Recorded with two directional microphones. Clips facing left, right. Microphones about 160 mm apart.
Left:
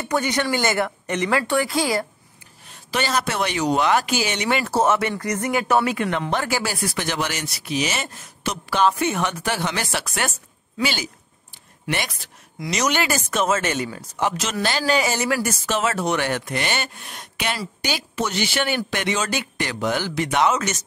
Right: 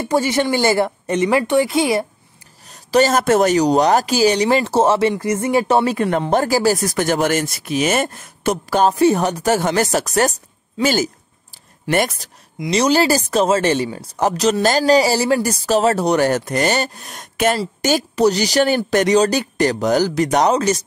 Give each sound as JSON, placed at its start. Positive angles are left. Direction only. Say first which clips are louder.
{"t": 0.0, "sound": "speech", "louder": "right 5 dB", "side_deg": -25}
{"t": 2.7, "sound": "speech", "louder": "right 9 dB", "side_deg": -40}
{"t": 12.5, "sound": "speech", "louder": "right 7 dB", "side_deg": -30}